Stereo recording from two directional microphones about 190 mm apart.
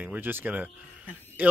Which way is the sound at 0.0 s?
10° right (ahead or behind).